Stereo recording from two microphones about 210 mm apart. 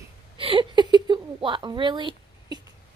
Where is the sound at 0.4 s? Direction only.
25° right (ahead or behind).